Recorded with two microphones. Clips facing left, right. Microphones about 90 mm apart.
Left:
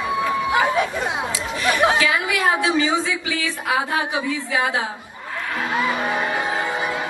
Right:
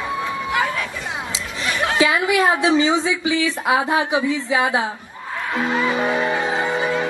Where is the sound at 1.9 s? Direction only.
20° right (ahead or behind).